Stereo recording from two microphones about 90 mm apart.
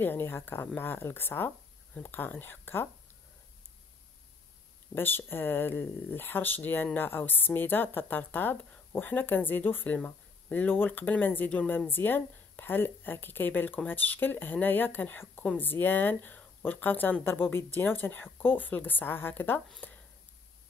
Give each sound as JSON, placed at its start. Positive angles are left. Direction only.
{"t": 0.0, "sound": "speech", "side_deg": 25}
{"t": 4.9, "sound": "speech", "side_deg": 25}
{"t": 19.8, "sound": "a sound", "side_deg": 20}